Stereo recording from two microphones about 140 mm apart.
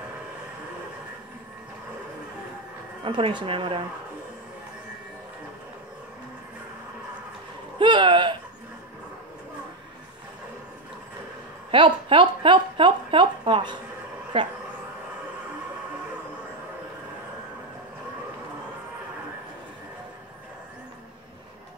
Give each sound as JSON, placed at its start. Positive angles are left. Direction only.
{"t": 3.0, "sound": "a woman's voice", "side_deg": -35}
{"t": 7.8, "sound": "a sound", "side_deg": -35}
{"t": 11.7, "sound": "a woman's voice", "side_deg": -35}